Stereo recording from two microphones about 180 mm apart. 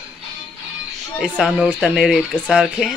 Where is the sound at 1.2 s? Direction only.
5° right (ahead or behind).